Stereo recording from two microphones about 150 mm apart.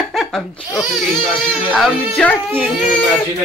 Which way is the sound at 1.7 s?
10° left (ahead or behind).